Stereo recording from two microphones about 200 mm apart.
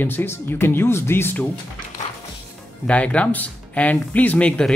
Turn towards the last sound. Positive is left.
turn(degrees=5)  # may be behind; listen again after turning